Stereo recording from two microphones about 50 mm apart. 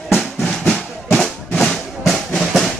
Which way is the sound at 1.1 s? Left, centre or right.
Centre.